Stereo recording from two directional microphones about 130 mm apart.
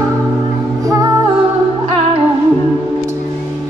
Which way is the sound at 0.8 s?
25° right (ahead or behind).